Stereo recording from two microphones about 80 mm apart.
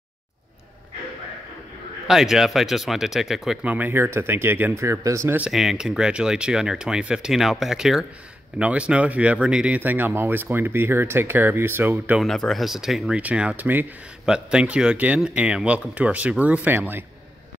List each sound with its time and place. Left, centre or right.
2.0 s speech: centre
3.6 s speech: right
4.7 s speech: right
5.5 s speech: centre; by 12.2 s right
12.2 s speech: centre
13.2 s speech: centre
14.2 s speech: centre; by 17.0 s right